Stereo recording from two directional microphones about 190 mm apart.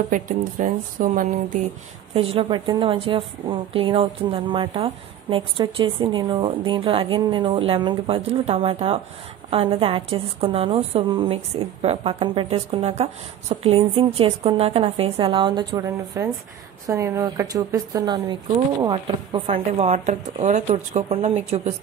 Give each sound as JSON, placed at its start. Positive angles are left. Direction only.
{"t": 0.1, "sound": "speech", "side_deg": -45}
{"t": 2.1, "sound": "a woman's voice", "side_deg": -30}